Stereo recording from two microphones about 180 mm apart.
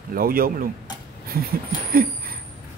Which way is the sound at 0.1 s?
55° right (ahead or behind).